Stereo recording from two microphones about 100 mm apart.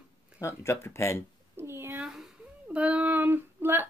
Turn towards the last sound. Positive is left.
turn(degrees=-20)  # may be behind; listen again after turning